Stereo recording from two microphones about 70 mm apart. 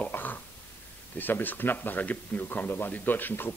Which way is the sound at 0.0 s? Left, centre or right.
Left.